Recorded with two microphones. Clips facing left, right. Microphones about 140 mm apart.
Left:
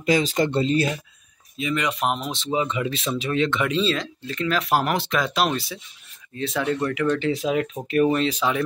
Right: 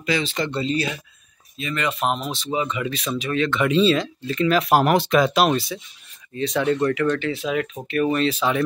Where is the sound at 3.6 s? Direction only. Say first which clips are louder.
Right 5 dB; 5° right (ahead or behind).